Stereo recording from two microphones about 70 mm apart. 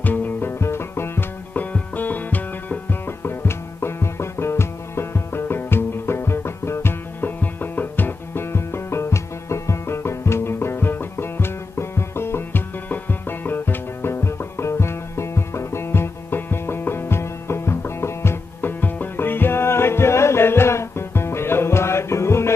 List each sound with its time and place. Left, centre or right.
0.0 s music: left
1.5 s music: left